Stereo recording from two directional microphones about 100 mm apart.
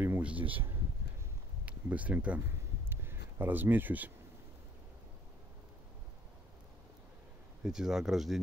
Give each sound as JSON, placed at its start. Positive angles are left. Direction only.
{"t": 0.2, "sound": "speech", "side_deg": -15}
{"t": 2.9, "sound": "a sound", "side_deg": -20}
{"t": 7.6, "sound": "speech", "side_deg": -5}